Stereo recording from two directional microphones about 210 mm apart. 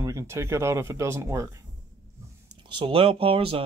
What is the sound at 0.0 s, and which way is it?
Speech, 15° right (ahead or behind).